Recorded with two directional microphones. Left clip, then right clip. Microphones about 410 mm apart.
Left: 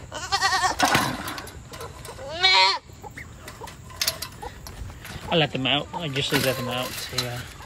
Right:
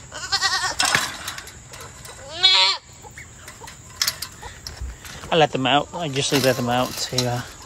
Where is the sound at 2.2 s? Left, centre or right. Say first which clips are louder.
Right 2 dB; centre.